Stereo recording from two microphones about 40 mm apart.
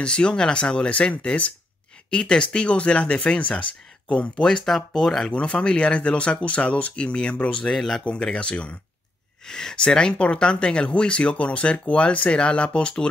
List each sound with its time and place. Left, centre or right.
0.0 s speech: left
4.5 s speech: centre
5.3 s speech: left
7.7 s speech: centre
8.0 s speech: left
9.5 s speech: centre